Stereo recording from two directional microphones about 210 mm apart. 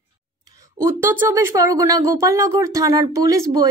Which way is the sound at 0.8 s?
10° right (ahead or behind).